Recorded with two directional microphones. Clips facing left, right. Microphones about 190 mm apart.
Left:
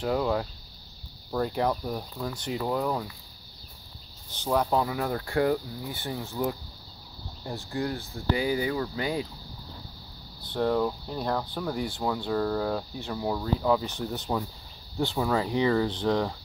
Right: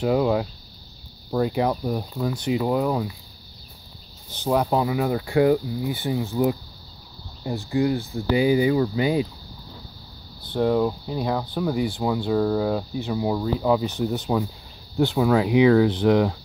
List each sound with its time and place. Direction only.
0.0 s speech: 15° right (ahead or behind)
4.3 s speech: 10° right (ahead or behind)
10.5 s speech: 10° right (ahead or behind)